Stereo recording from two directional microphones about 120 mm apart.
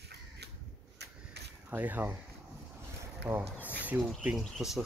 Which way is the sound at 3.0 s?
20° right (ahead or behind).